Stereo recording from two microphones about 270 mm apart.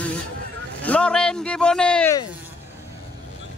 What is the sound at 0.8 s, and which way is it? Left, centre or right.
A man's voice, centre.